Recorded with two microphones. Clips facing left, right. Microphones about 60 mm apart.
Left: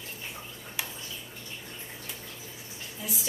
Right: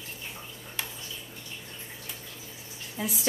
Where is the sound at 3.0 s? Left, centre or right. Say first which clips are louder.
Right 6 dB; right.